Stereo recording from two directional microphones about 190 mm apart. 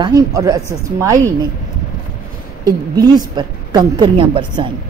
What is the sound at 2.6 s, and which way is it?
A woman's voice, 20° right (ahead or behind).